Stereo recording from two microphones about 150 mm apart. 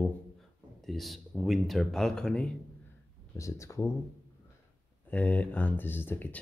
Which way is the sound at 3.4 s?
20° left (ahead or behind).